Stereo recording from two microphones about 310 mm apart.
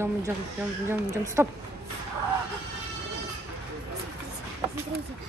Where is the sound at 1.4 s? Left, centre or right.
Centre.